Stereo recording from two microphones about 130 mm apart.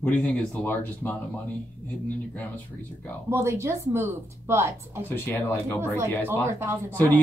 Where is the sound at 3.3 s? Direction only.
20° right (ahead or behind).